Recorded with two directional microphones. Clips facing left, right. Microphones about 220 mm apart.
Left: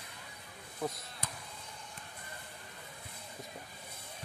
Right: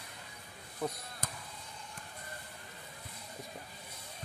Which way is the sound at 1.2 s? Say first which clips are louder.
Right 1 dB; 45° right (ahead or behind).